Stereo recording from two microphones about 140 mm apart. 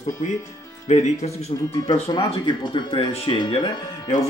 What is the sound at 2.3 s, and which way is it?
Speech, 35° left (ahead or behind).